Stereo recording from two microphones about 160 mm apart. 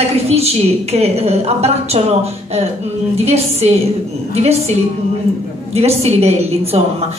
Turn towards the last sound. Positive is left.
turn(degrees=-40)  # may be behind; listen again after turning